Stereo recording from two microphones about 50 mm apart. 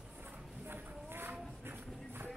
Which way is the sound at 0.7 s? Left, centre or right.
Right.